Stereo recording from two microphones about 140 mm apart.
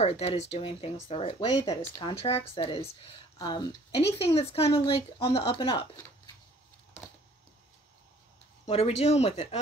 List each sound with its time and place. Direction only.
0.0 s speech: 45° left (ahead or behind)
3.3 s speech: 30° left (ahead or behind)
8.6 s speech: 45° left (ahead or behind)